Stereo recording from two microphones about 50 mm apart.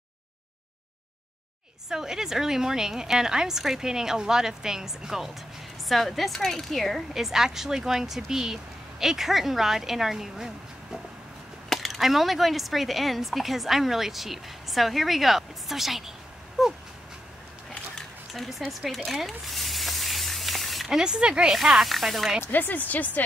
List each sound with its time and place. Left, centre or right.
1.9 s a woman's voice: centre
17.9 s a sound: centre
19.2 s spray: centre
21.0 s a woman's voice: centre
21.6 s speech: centre
22.4 s speech: left